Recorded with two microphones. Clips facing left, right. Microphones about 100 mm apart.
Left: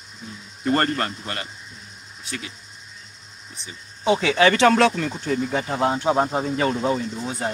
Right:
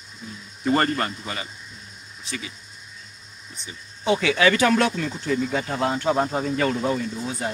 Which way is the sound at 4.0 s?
25° left (ahead or behind).